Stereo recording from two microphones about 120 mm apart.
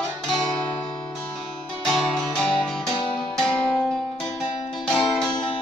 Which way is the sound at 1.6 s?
Centre (ahead or behind).